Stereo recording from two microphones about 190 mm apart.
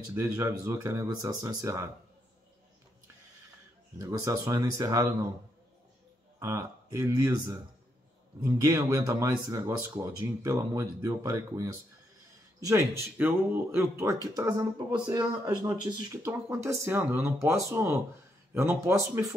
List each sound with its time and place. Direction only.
0.1 s speech: 15° right (ahead or behind)
4.0 s speech: 15° right (ahead or behind)
6.4 s speech: 15° right (ahead or behind)